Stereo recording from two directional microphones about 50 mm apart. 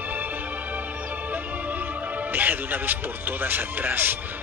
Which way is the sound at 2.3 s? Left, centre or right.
Right.